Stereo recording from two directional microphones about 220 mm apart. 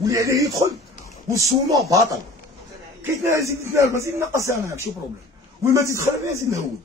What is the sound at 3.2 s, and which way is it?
Speech, 15° right (ahead or behind).